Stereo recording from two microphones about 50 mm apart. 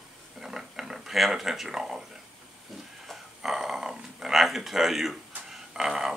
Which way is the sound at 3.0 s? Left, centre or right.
Centre.